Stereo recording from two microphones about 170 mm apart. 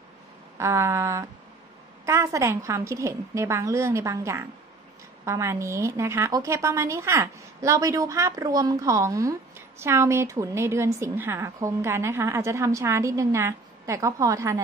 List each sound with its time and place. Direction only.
0.6 s a woman's voice: 15° right (ahead or behind)